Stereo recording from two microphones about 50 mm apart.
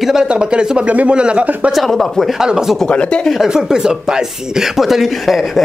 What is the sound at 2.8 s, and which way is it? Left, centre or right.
Speech, left.